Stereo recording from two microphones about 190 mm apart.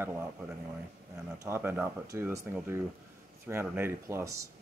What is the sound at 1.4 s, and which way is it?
Speech, 15° right (ahead or behind).